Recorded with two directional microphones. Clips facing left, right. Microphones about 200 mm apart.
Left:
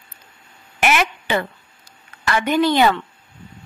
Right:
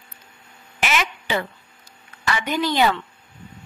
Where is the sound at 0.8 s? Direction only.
55° left (ahead or behind).